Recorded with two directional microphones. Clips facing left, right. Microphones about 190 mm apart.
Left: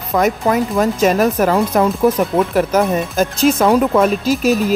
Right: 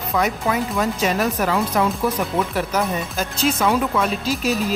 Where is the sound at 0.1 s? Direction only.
45° left (ahead or behind).